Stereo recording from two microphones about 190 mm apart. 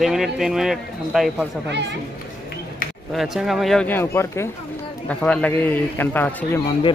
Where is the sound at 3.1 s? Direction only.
Centre (ahead or behind).